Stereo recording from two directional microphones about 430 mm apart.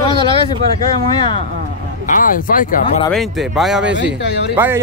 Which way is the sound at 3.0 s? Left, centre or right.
Centre.